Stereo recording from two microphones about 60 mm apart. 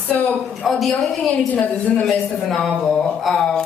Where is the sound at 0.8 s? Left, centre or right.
Centre.